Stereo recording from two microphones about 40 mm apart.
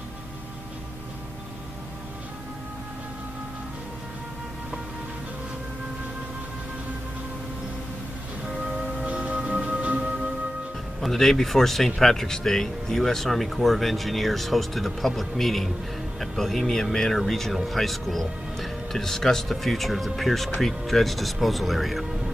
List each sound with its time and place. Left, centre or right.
9.2 s music: right
11.0 s speech: centre